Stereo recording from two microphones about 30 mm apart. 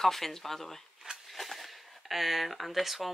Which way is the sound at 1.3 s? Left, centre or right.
Centre.